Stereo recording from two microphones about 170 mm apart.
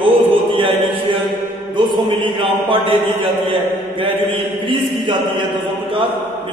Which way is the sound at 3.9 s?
30° right (ahead or behind).